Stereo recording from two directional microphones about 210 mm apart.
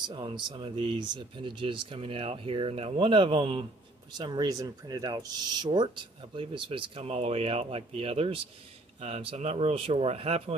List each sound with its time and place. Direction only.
0.0 s speech: 20° right (ahead or behind)